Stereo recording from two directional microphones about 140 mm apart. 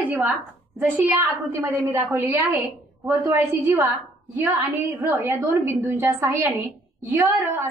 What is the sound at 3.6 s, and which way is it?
A woman's voice, 25° right (ahead or behind).